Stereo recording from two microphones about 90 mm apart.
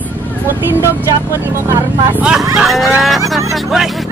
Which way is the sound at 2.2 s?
10° right (ahead or behind).